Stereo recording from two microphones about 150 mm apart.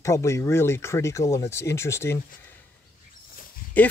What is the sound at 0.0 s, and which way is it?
Speech, 20° left (ahead or behind).